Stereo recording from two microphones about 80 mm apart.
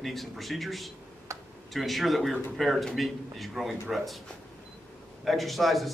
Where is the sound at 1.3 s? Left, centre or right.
Right.